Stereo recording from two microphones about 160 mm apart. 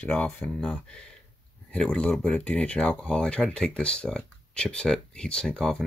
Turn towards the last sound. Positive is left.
turn(degrees=5)  # may be behind; listen again after turning